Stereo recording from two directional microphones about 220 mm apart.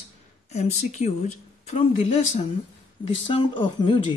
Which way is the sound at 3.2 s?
20° left (ahead or behind).